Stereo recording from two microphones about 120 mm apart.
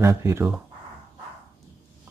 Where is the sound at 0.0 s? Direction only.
20° right (ahead or behind).